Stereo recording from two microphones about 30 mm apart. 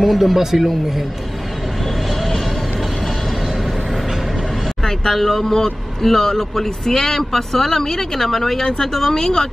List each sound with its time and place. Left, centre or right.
0.0 s speech: centre
5.1 s speech: centre